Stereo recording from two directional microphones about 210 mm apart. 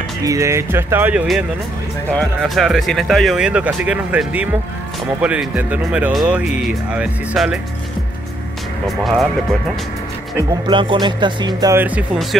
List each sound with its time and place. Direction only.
0.2 s speech: 15° right (ahead or behind)
8.8 s speech: centre (ahead or behind)
10.7 s speech: 25° right (ahead or behind); by 12.4 s 5° right (ahead or behind)